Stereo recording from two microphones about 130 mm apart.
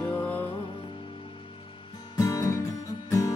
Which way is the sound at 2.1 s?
25° left (ahead or behind).